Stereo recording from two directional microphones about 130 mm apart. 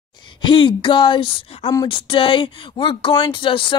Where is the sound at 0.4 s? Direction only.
40° left (ahead or behind).